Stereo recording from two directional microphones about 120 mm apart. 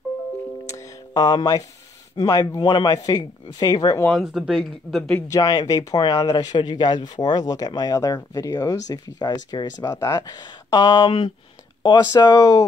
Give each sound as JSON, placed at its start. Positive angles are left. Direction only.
{"t": 0.7, "sound": "music", "side_deg": 35}
{"t": 2.1, "sound": "speech", "side_deg": 30}
{"t": 4.2, "sound": "speech", "side_deg": 0}
{"t": 5.3, "sound": "speech", "side_deg": 30}